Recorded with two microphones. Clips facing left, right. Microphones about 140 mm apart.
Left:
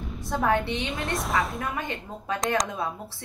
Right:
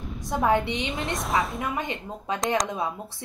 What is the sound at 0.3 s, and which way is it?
Speech, 15° right (ahead or behind).